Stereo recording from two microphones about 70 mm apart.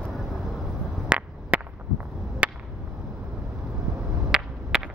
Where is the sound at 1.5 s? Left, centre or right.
Centre.